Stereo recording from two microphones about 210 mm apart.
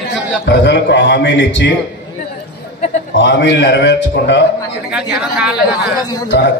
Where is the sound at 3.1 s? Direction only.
60° left (ahead or behind).